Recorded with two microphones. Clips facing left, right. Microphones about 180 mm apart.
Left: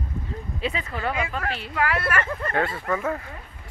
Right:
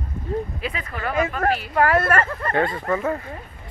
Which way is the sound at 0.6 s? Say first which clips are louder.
Left 1 dB; 25° left (ahead or behind).